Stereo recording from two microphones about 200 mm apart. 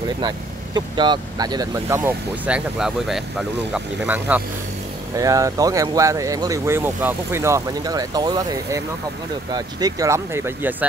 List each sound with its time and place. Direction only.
0.7 s speech: 20° right (ahead or behind); by 4.4 s 5° right (ahead or behind)
5.1 s speech: 15° right (ahead or behind)